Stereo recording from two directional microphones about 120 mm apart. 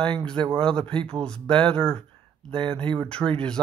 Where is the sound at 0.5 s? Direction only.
5° left (ahead or behind).